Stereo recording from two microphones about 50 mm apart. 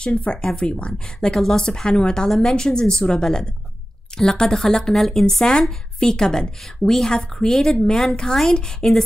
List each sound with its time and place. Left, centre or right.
0.0 s speech: left